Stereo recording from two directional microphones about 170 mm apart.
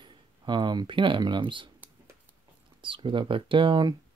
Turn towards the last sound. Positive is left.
turn(degrees=-30)  # may be behind; listen again after turning